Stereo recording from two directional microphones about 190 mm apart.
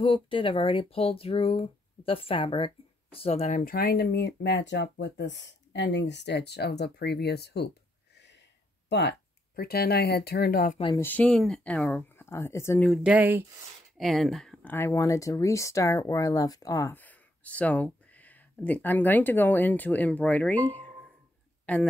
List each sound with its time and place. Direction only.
0.0 s speech: 25° left (ahead or behind); by 7.7 s 60° left (ahead or behind)
8.8 s a sound: 65° left (ahead or behind)
9.6 s speech: 55° left (ahead or behind)
11.0 s speech: 10° left (ahead or behind)
12.9 s speech: 5° right (ahead or behind)